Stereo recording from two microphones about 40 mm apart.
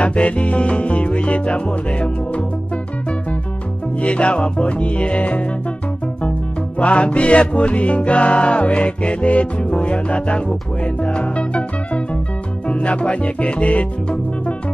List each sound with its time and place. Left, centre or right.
0.0 s music: left
4.0 s music: left
6.8 s music: left